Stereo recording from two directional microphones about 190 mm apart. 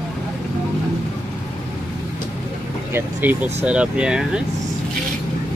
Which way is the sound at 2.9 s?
10° right (ahead or behind).